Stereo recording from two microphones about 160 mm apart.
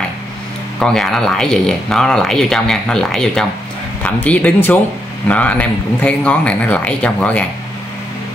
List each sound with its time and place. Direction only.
0.7 s a man's voice: 5° left (ahead or behind)